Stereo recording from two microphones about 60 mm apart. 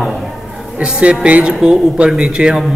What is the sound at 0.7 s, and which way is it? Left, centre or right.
A woman's voice, centre.